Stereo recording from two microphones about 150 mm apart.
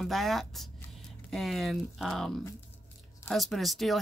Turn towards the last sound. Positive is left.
turn(degrees=0)  # may be behind; listen again after turning